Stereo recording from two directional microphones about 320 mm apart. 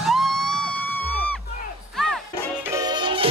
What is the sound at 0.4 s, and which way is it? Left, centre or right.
Music, right.